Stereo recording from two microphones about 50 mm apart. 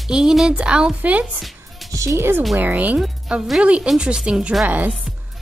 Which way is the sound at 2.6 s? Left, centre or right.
Right.